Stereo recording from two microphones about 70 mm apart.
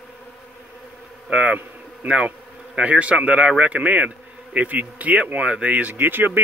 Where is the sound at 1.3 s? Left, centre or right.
Centre.